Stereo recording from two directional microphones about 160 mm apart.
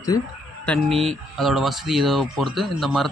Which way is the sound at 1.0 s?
Centre (ahead or behind).